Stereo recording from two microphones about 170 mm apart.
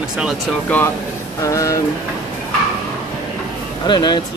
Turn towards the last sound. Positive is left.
turn(degrees=25)  # may be behind; listen again after turning